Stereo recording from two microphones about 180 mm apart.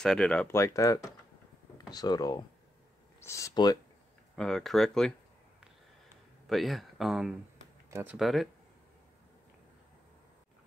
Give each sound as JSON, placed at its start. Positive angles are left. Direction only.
{"t": 0.0, "sound": "speech", "side_deg": 5}
{"t": 4.4, "sound": "speech", "side_deg": 0}
{"t": 6.4, "sound": "speech", "side_deg": 0}
{"t": 8.2, "sound": "speech", "side_deg": 0}